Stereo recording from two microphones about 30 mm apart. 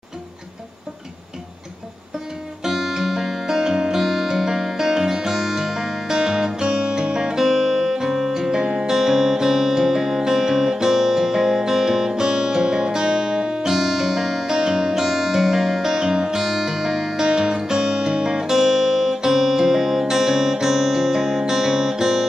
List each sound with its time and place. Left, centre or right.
2.6 s music: centre